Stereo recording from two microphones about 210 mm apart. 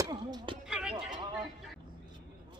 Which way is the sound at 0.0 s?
20° right (ahead or behind).